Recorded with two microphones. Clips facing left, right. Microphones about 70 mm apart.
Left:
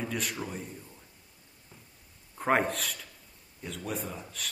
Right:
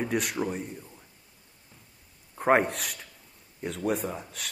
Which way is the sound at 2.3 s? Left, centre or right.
Centre.